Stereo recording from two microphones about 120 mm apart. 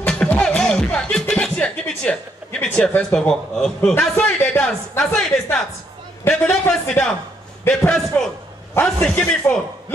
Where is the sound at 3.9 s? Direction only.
15° left (ahead or behind).